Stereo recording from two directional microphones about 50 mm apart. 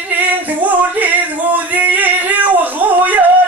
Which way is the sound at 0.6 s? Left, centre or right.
Right.